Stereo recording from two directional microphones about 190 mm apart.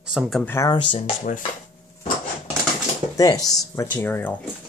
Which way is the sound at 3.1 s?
20° left (ahead or behind).